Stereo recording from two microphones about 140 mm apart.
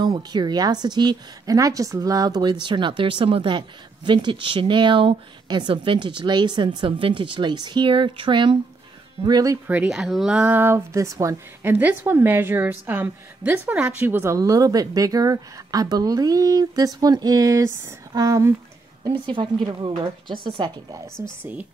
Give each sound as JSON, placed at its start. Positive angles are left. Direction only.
{"t": 0.0, "sound": "a woman's voice", "side_deg": -30}
{"t": 9.7, "sound": "speech", "side_deg": -5}
{"t": 19.0, "sound": "a woman's voice", "side_deg": -35}
{"t": 20.9, "sound": "a woman's voice", "side_deg": -15}